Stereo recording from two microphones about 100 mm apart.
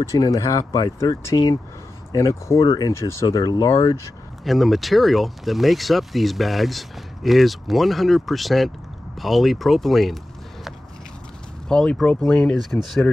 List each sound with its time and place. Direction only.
0.2 s speech: 35° left (ahead or behind)
2.6 s speech: 45° left (ahead or behind)
2.9 s speech: 30° left (ahead or behind)
3.3 s speech: 40° left (ahead or behind)
4.5 s speech: centre (ahead or behind)
11.7 s speech: 5° left (ahead or behind)